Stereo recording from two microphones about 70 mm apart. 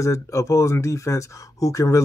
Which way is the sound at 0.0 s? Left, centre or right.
Left.